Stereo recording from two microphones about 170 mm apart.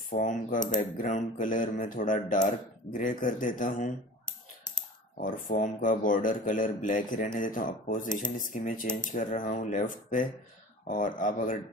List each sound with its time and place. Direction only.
0.1 s speech: 50° left (ahead or behind)
5.2 s speech: 50° left (ahead or behind)